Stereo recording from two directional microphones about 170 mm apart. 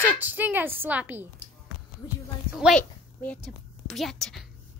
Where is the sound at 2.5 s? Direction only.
5° right (ahead or behind).